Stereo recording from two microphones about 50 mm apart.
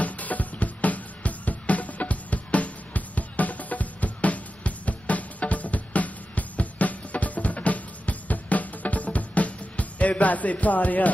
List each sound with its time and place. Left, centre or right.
0.0 s music: left